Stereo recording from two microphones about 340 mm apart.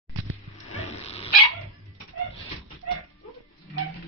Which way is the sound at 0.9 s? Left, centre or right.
Centre.